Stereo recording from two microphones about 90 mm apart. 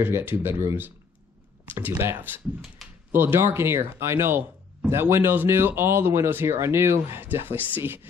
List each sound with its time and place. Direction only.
0.0 s speech: 20° right (ahead or behind)